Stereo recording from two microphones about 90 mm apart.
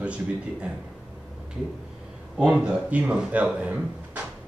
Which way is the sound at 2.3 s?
10° right (ahead or behind).